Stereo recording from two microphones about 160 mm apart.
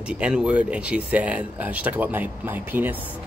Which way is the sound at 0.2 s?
5° right (ahead or behind).